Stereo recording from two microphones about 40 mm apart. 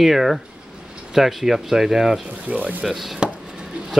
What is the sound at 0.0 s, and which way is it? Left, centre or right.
Speech, centre.